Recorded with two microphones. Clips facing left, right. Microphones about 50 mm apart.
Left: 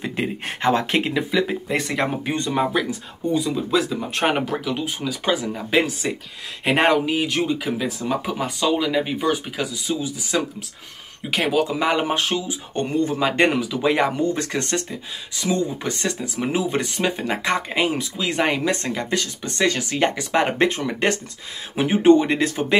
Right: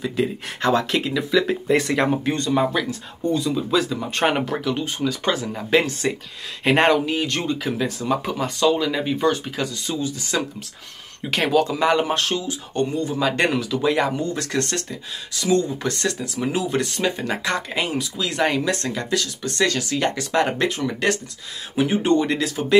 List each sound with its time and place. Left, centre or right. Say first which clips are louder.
0.0 s speech: right 2 dB; left
1.7 s speech: right 4 dB; centre
2.2 s speech: right 2 dB; centre